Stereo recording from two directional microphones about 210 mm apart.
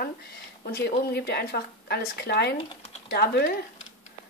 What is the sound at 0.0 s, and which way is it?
Speech, 45° left (ahead or behind).